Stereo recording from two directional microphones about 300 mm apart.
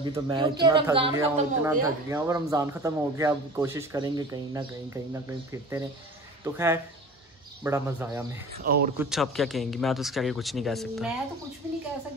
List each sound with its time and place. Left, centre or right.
0.0 s speech: centre
8.6 s speech: right
8.9 s speech: centre